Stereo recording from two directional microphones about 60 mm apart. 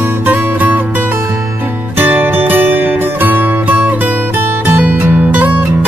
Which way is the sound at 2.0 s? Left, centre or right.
Right.